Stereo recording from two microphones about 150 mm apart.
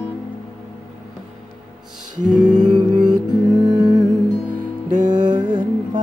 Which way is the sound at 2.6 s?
30° right (ahead or behind).